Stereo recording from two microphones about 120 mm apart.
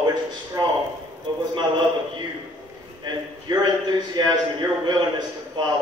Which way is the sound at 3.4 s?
35° right (ahead or behind).